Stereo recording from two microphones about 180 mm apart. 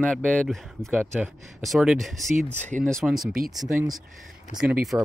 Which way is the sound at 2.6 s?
40° right (ahead or behind).